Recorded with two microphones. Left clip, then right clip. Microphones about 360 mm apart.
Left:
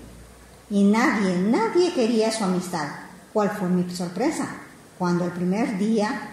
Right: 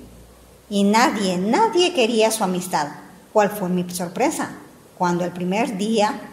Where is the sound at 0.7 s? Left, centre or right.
Right.